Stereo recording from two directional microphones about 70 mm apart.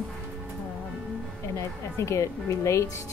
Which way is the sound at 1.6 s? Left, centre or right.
Left.